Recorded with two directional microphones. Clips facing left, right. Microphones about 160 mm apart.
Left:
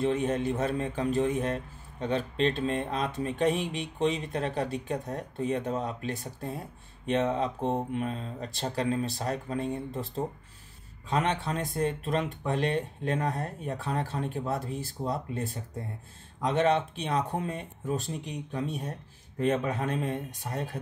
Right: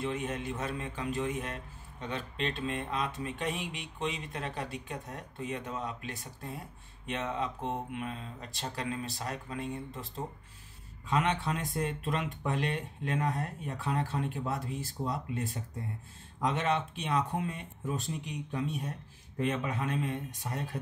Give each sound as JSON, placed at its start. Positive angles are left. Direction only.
{"t": 0.0, "sound": "speech", "side_deg": 30}
{"t": 16.5, "sound": "speech", "side_deg": 35}